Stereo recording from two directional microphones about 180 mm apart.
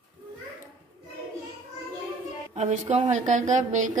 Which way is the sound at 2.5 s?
40° right (ahead or behind).